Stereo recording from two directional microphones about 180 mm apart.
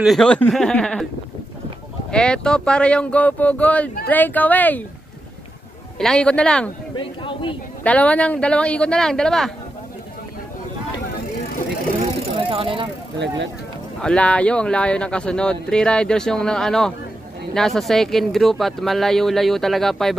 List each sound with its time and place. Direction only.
0.0 s speech: centre (ahead or behind)
2.0 s speech: 5° left (ahead or behind)
5.9 s speech: 5° left (ahead or behind)
7.0 s speech: 30° left (ahead or behind)
7.8 s speech: 10° left (ahead or behind)
12.4 s bicycle: 30° right (ahead or behind)
14.0 s speech: 5° left (ahead or behind)